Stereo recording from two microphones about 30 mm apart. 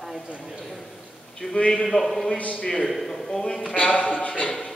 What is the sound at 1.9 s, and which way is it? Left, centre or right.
Speech, centre.